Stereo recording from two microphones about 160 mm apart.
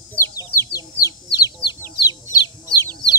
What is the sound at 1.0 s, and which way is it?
Chicken, 20° left (ahead or behind).